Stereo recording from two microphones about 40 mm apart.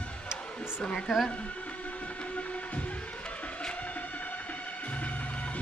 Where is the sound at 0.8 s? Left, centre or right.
Left.